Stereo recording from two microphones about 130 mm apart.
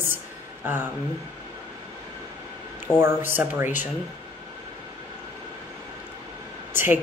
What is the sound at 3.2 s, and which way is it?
Speech, 15° right (ahead or behind).